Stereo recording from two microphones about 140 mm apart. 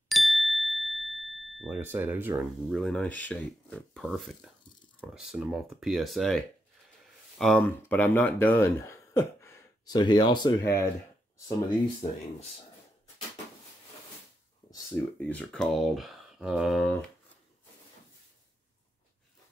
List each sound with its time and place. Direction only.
0.1 s ding: centre (ahead or behind)
1.7 s speech: 15° right (ahead or behind)
2.7 s speech: 5° left (ahead or behind); by 10.9 s 30° left (ahead or behind)
12.0 s speech: 40° left (ahead or behind)
15.1 s speech: 10° left (ahead or behind)